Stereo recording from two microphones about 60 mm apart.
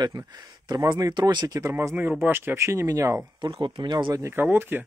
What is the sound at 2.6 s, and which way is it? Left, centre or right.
Speech, right.